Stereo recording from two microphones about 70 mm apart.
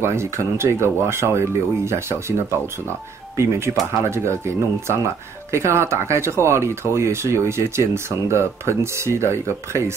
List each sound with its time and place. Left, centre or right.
0.0 s speech: right
3.3 s speech: right